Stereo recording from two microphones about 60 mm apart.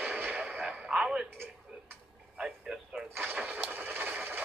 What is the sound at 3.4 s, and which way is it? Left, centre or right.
Vehicle, right.